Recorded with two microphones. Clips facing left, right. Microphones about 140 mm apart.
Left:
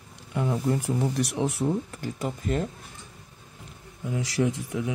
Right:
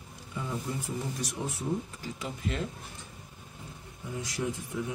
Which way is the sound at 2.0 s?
50° left (ahead or behind).